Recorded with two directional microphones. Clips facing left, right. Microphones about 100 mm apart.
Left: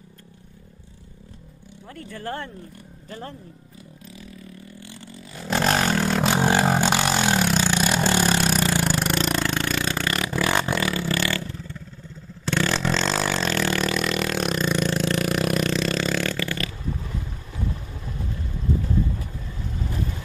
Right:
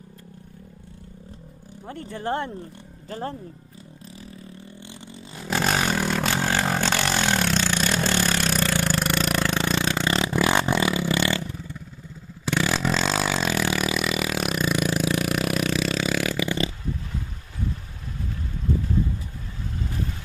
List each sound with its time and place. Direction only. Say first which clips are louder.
1.9 s speech: right 4 dB; 25° right (ahead or behind)
3.1 s speech: right 5 dB; 35° right (ahead or behind)
4.2 s vehicle: even; 25° right (ahead or behind)
5.4 s vehicle: left 2 dB; centre (ahead or behind)
6.2 s vehicle: left 4 dB; 15° left (ahead or behind)
8.8 s a sound: left 1 dB; 5° left (ahead or behind)
9.6 s vehicle: right 1 dB; 20° right (ahead or behind)